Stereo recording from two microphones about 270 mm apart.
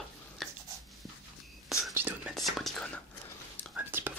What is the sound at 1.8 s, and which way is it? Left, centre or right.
Whispering, centre.